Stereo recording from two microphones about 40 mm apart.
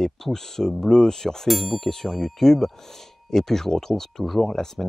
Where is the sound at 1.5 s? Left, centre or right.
Centre.